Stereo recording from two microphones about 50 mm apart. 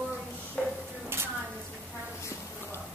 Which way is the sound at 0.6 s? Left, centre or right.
Centre.